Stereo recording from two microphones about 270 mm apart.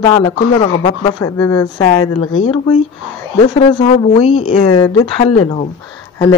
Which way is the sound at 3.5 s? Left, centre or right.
Left.